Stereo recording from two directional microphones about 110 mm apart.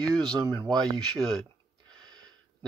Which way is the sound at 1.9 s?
40° right (ahead or behind).